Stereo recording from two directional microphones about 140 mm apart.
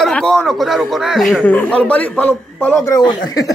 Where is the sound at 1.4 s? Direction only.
10° left (ahead or behind).